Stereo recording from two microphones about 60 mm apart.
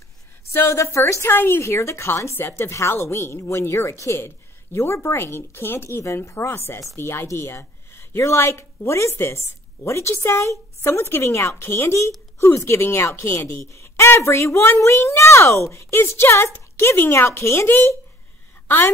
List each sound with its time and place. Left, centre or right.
0.5 s a woman's voice: left
12.4 s a woman's voice: left
13.7 s a woman's voice: left